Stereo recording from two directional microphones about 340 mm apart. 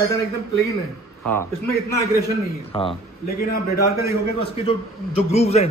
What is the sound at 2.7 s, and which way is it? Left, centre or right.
Speech, centre.